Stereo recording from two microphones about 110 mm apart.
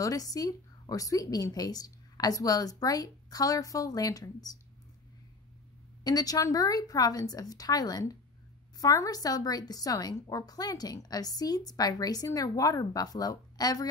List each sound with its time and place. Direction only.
0.0 s a woman's voice: 35° left (ahead or behind)
6.0 s a woman's voice: 35° left (ahead or behind)